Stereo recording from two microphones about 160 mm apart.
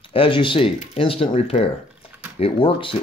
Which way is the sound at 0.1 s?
30° left (ahead or behind).